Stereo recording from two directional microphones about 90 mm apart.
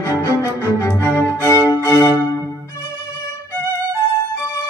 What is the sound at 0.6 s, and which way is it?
Music, 25° right (ahead or behind).